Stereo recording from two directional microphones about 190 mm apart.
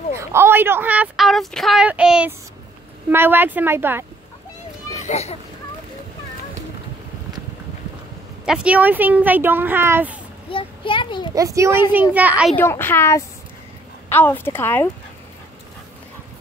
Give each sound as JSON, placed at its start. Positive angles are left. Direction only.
{"t": 0.2, "sound": "a woman's voice", "side_deg": -15}
{"t": 4.9, "sound": "speech", "side_deg": 35}
{"t": 8.5, "sound": "a woman's voice", "side_deg": -5}
{"t": 10.5, "sound": "a child's voice", "side_deg": 25}
{"t": 11.3, "sound": "a woman's voice", "side_deg": -15}
{"t": 12.5, "sound": "speech", "side_deg": 10}